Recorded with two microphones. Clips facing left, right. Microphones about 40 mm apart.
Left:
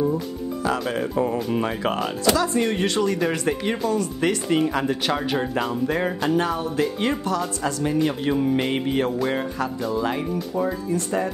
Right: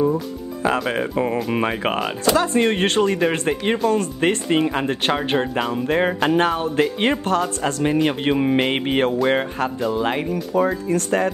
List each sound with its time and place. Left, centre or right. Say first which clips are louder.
0.0 s speech: right 3 dB; right
2.0 s speech: right 1 dB; centre
2.3 s speech: right 4 dB; right
3.1 s speech: right 3 dB; right
5.5 s speech: right 2 dB; centre
5.9 s speech: right 4 dB; right
8.5 s speech: right 3 dB; right
8.8 s speech: right 4 dB; right
10.5 s speech: right 6 dB; right